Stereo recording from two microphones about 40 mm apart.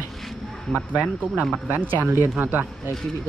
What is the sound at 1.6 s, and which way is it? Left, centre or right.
Speech, right.